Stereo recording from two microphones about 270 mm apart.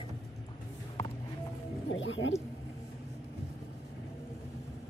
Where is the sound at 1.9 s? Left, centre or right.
Left.